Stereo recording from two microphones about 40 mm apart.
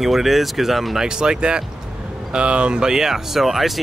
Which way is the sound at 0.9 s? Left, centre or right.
Centre.